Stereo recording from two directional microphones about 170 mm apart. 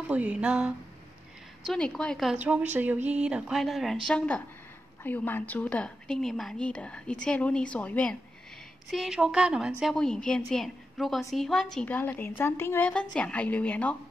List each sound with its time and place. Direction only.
0.1 s a woman's voice: 10° right (ahead or behind)
2.4 s speech: 10° right (ahead or behind)
5.0 s a woman's voice: 10° left (ahead or behind)
8.9 s a woman's voice: 5° right (ahead or behind)